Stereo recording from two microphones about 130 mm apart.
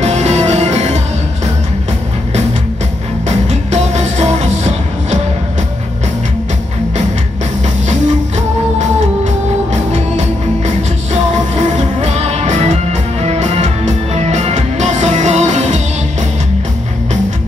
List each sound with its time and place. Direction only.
0.0 s music: 60° right (ahead or behind)
3.3 s music: 60° right (ahead or behind)
8.7 s music: 60° right (ahead or behind)